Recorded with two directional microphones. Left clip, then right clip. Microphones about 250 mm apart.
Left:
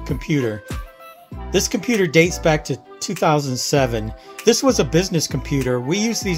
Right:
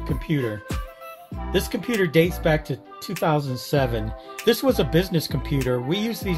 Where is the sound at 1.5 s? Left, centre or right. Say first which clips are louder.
Left 5 dB; left.